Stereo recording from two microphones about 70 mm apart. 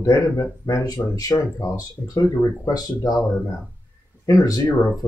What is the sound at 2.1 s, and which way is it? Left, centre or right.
Speech, left.